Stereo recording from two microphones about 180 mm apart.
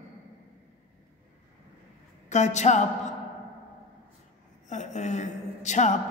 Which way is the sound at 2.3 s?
40° left (ahead or behind).